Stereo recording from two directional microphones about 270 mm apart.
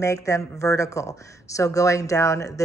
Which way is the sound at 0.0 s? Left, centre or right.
Centre.